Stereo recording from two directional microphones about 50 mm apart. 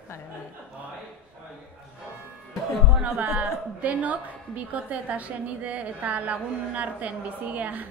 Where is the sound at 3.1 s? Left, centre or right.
Right.